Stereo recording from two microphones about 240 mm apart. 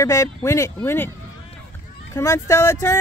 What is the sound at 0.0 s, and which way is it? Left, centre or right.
Speech, centre.